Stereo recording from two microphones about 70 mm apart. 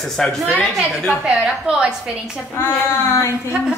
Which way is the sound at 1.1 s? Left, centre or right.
Centre.